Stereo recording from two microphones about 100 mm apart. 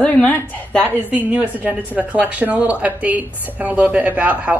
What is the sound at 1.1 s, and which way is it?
Speech, 15° right (ahead or behind).